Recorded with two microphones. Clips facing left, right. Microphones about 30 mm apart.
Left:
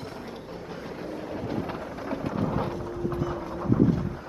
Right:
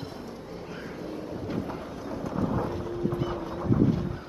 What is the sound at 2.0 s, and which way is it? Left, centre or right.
Thunder, left.